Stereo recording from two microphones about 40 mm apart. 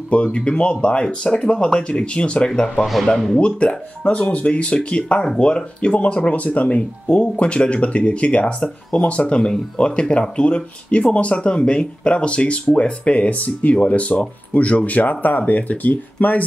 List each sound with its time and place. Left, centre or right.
0.1 s speech: left
9.8 s speech: left